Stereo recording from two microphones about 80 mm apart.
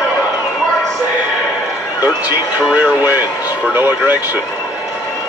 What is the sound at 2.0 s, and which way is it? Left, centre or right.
Speech, right.